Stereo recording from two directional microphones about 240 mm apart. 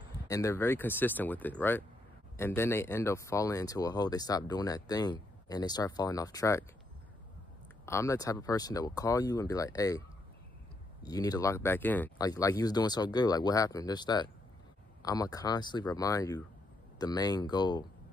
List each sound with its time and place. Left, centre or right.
0.3 s speech: centre
7.8 s speech: centre